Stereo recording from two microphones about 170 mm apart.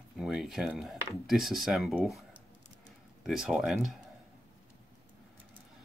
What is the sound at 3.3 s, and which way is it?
Speech, centre (ahead or behind).